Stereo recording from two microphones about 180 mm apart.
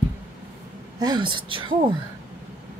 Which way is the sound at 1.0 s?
25° right (ahead or behind).